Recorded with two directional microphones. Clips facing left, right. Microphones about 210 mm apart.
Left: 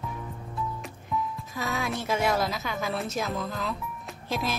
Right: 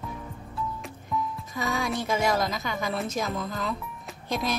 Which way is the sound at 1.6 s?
Centre (ahead or behind).